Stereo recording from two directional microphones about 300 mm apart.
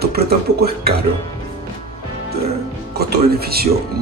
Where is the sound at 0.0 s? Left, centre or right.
Right.